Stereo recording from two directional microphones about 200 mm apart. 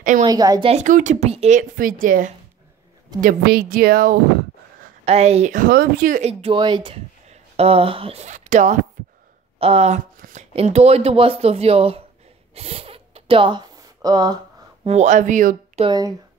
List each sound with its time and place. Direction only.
0.2 s speech: 20° right (ahead or behind); by 4.2 s 45° right (ahead or behind)
5.0 s speech: 30° right (ahead or behind)
12.5 s zipper: 30° right (ahead or behind)
14.9 s speech: 35° right (ahead or behind)